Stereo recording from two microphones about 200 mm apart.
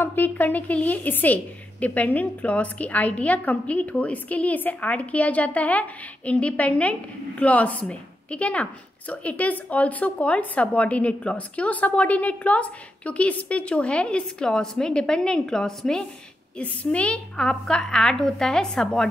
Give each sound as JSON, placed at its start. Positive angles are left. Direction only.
{"t": 0.0, "sound": "a woman's voice", "side_deg": 10}